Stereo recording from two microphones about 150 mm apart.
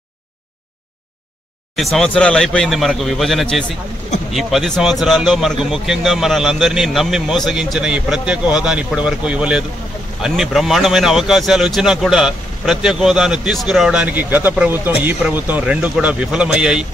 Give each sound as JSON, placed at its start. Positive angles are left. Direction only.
{"t": 1.8, "sound": "speech", "side_deg": 0}